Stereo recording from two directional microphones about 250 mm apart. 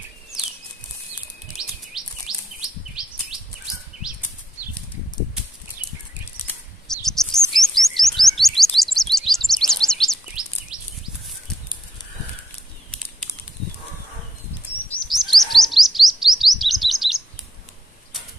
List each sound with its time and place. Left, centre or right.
1.6 s chirp: centre
6.4 s chirp: centre
14.9 s chirp: centre